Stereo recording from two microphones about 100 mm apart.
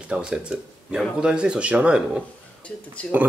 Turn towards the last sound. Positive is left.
turn(degrees=15)  # may be behind; listen again after turning